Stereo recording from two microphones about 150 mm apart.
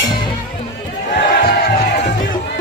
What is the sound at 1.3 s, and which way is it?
Crowd, 85° left.